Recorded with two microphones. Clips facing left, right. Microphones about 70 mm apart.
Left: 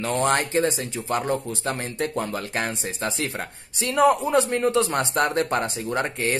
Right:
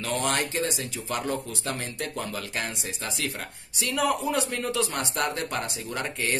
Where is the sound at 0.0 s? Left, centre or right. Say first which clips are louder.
Left 5 dB; left.